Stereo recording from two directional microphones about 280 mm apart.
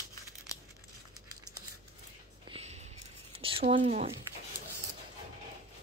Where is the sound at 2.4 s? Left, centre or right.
Right.